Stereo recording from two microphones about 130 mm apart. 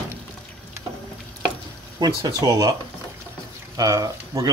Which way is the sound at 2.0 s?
30° right (ahead or behind).